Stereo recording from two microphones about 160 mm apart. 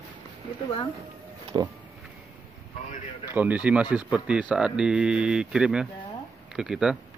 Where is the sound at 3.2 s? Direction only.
10° right (ahead or behind).